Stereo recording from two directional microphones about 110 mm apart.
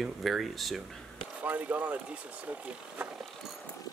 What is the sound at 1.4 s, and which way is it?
Speech, 15° right (ahead or behind).